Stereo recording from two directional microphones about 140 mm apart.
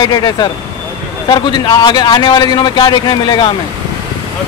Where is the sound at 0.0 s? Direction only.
30° left (ahead or behind).